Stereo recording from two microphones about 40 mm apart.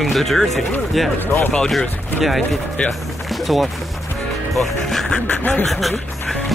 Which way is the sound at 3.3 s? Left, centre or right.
Centre.